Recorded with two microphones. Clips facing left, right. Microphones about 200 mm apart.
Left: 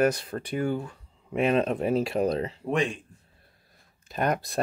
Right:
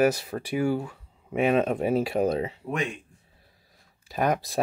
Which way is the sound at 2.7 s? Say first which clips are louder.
Left 4 dB; 30° left (ahead or behind).